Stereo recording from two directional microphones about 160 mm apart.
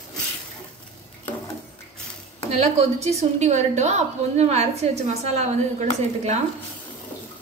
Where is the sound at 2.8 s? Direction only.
40° right (ahead or behind).